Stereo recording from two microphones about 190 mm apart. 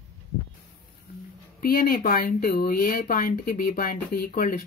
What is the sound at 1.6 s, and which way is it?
Speech, 50° left (ahead or behind).